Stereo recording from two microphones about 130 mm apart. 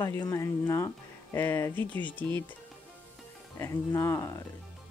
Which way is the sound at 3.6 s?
20° left (ahead or behind).